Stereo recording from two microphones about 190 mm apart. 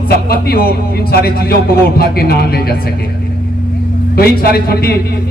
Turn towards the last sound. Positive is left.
turn(degrees=55)  # may be behind; listen again after turning